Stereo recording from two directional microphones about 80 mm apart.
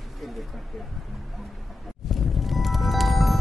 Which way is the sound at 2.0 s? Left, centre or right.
Centre.